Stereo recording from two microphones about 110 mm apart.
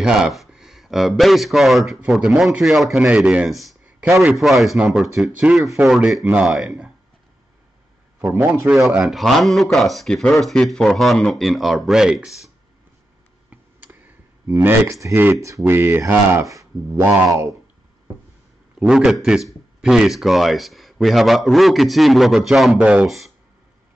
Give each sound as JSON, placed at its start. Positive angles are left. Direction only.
{"t": 0.0, "sound": "speech", "side_deg": -5}
{"t": 3.0, "sound": "speech", "side_deg": -10}
{"t": 8.2, "sound": "speech", "side_deg": -15}
{"t": 8.9, "sound": "speech", "side_deg": -5}
{"t": 13.5, "sound": "clicking", "side_deg": -15}
{"t": 15.4, "sound": "speech", "side_deg": -25}
{"t": 17.3, "sound": "speech", "side_deg": -30}
{"t": 18.8, "sound": "speech", "side_deg": -5}